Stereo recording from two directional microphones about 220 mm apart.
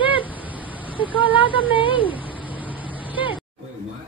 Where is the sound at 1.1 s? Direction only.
25° left (ahead or behind).